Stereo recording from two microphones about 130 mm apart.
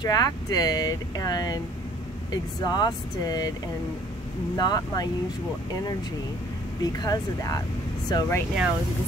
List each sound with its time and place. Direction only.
0.0 s speech: 30° left (ahead or behind)
4.6 s speech: 30° left (ahead or behind)
6.8 s speech: 30° left (ahead or behind)